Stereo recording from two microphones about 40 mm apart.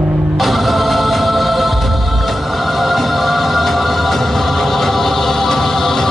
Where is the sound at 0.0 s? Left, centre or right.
Right.